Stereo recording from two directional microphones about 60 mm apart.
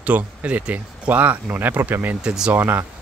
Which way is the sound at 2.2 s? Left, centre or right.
Centre.